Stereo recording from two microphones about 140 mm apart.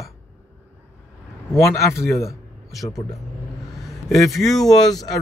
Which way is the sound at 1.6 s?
20° left (ahead or behind).